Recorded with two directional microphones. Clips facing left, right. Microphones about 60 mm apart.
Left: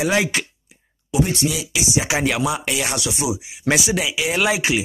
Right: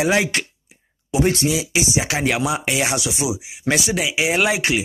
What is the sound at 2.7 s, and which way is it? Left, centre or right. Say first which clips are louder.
Speech: right 3 dB; right.